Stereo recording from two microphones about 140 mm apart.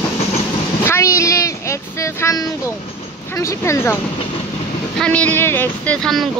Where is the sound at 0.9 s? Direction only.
20° left (ahead or behind).